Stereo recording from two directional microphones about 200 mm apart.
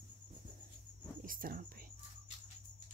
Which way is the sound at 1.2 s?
45° right (ahead or behind).